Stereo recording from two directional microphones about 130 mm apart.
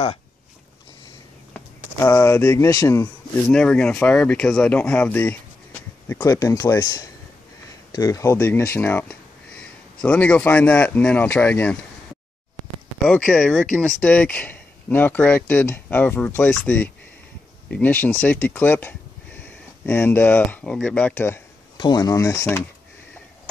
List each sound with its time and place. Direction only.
2.0 s speech: 20° left (ahead or behind)
3.4 s speech: 5° left (ahead or behind)
6.4 s a man's voice: 25° left (ahead or behind); by 11.8 s 10° left (ahead or behind)
13.3 s speech: 5° left (ahead or behind)
17.6 s speech: 10° left (ahead or behind)
21.7 s speech: 30° left (ahead or behind)